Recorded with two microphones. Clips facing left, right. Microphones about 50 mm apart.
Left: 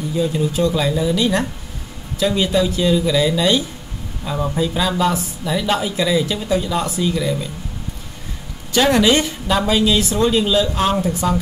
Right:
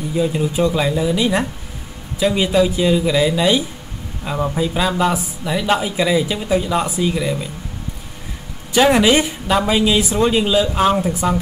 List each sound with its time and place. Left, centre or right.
0.1 s speech: right
8.7 s speech: centre